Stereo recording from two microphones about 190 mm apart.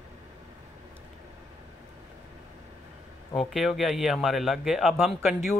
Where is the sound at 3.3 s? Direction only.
Centre (ahead or behind).